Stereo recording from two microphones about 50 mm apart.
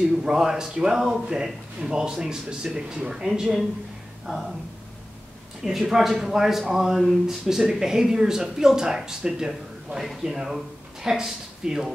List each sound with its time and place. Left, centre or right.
0.2 s speech: centre
4.3 s speech: centre
5.6 s speech: centre